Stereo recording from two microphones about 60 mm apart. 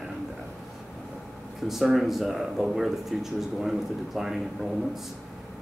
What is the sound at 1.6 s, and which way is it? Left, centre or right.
Speech, centre.